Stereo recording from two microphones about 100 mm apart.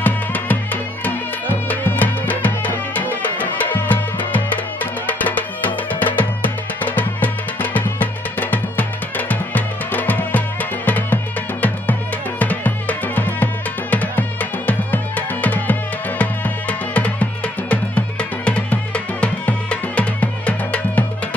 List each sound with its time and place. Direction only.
0.0 s music: 15° left (ahead or behind)
12.4 s music: 15° left (ahead or behind)